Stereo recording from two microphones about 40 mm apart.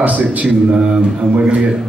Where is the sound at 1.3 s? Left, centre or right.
Right.